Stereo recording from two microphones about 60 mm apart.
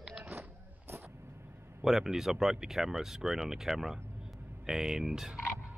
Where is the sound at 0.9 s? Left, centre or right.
Right.